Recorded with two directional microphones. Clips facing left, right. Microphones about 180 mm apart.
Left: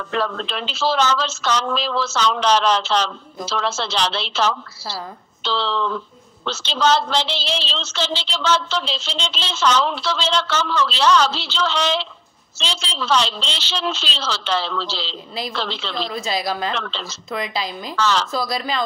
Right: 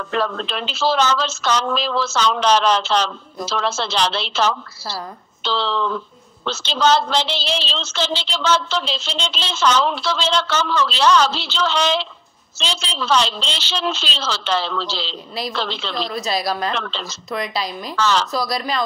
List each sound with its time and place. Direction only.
0.1 s speech: 50° right (ahead or behind)
15.9 s speech: 25° left (ahead or behind)
17.9 s speech: 45° right (ahead or behind)
18.3 s speech: 25° left (ahead or behind)